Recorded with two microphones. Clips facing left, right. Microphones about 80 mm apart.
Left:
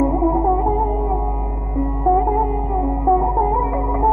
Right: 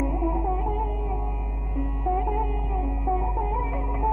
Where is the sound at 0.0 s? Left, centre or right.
Left.